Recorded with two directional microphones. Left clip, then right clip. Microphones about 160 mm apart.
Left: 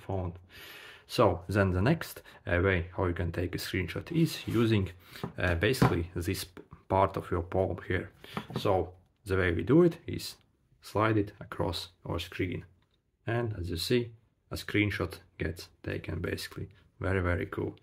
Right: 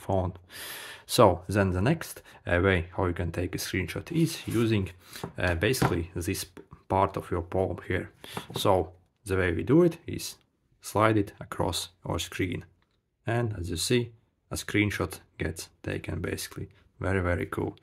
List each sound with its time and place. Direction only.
0.0 s speech: 50° right (ahead or behind)
1.5 s speech: 20° right (ahead or behind)
5.0 s speech: 25° right (ahead or behind)
8.2 s speech: 45° right (ahead or behind)
9.2 s speech: 20° right (ahead or behind)
10.8 s speech: 30° right (ahead or behind)